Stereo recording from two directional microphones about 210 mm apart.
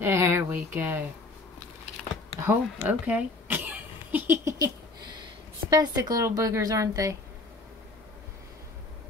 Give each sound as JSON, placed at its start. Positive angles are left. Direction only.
{"t": 0.0, "sound": "a woman's voice", "side_deg": -10}
{"t": 2.4, "sound": "speech", "side_deg": -5}
{"t": 5.7, "sound": "a woman's voice", "side_deg": -20}